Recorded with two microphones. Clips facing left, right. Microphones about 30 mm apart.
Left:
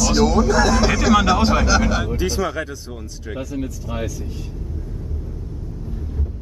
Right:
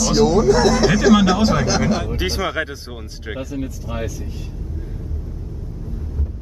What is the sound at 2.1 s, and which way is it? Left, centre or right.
Speech, right.